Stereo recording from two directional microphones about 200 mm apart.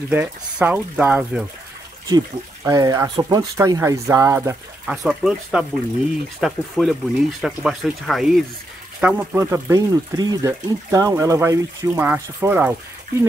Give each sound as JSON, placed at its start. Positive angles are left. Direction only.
{"t": 0.1, "sound": "speech", "side_deg": -5}
{"t": 2.0, "sound": "speech", "side_deg": -20}
{"t": 9.0, "sound": "speech", "side_deg": -10}